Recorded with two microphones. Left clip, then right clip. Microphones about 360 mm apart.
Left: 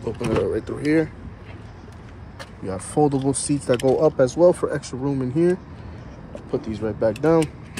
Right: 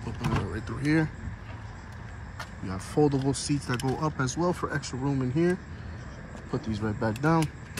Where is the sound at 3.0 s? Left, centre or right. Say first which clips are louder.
Left 5 dB; left.